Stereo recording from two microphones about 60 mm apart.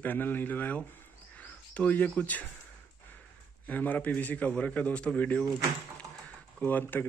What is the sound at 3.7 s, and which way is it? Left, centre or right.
Speech, left.